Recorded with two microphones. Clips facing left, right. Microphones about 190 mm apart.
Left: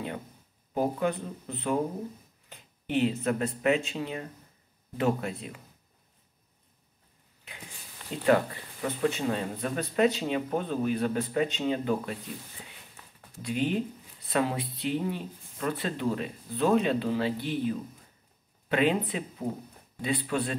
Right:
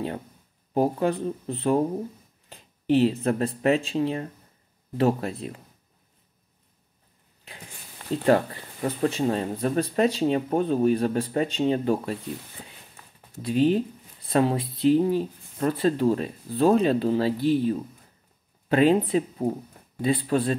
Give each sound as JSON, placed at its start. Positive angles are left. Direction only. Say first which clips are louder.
{"t": 0.7, "sound": "speech", "louder": "right 5 dB", "side_deg": -35}
{"t": 8.0, "sound": "a sound", "louder": "right 10 dB", "side_deg": -50}
{"t": 8.8, "sound": "speech", "louder": "right 4 dB", "side_deg": -35}
{"t": 13.4, "sound": "speech", "louder": "right 7 dB", "side_deg": -35}